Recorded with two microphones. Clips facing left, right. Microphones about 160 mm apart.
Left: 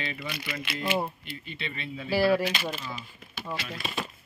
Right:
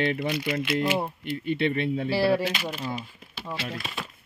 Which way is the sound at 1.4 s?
60° right (ahead or behind).